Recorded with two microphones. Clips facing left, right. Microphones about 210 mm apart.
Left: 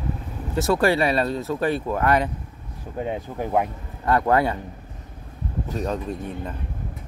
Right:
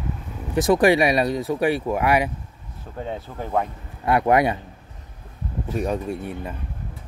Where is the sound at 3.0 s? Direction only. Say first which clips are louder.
Left 3 dB; 10° left (ahead or behind).